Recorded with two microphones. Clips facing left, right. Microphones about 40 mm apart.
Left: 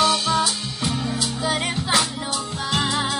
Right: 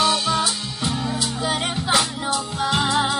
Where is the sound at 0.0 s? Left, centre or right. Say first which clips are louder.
Even; centre.